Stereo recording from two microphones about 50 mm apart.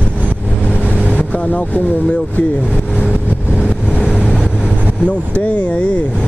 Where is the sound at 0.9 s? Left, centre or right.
Left.